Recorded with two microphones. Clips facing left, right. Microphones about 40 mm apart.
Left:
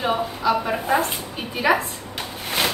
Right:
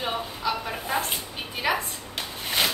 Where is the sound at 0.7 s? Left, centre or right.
Left.